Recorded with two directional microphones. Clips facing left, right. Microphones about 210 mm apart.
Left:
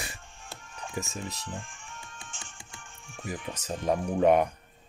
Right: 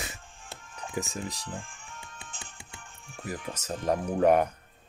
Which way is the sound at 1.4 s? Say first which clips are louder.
Even; 35° right (ahead or behind).